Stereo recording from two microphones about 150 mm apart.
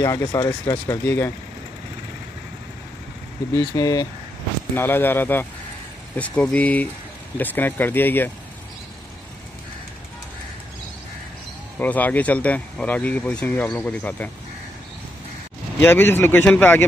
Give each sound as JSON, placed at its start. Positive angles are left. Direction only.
{"t": 0.0, "sound": "speech", "side_deg": 20}
{"t": 3.5, "sound": "speech", "side_deg": 25}
{"t": 4.7, "sound": "speech", "side_deg": 15}
{"t": 11.8, "sound": "speech", "side_deg": 10}
{"t": 15.8, "sound": "speech", "side_deg": 15}